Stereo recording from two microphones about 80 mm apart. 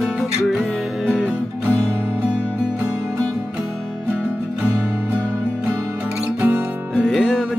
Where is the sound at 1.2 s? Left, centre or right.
Centre.